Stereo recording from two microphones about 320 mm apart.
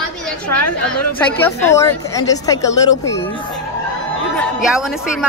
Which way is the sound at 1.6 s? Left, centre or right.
Centre.